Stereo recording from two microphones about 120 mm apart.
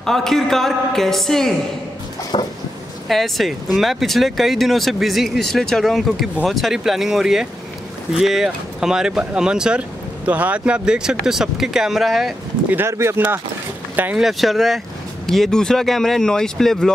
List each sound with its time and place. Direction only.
0.0 s speech: 5° left (ahead or behind)
2.3 s a sound: 45° left (ahead or behind)
3.1 s speech: centre (ahead or behind)
12.6 s speech: 20° right (ahead or behind)
14.1 s speech: centre (ahead or behind)